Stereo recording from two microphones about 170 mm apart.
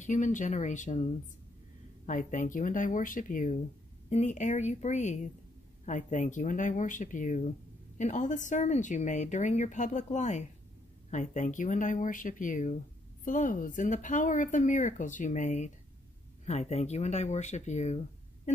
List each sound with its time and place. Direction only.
0.0 s speech: 45° left (ahead or behind)
2.0 s speech: 50° left (ahead or behind)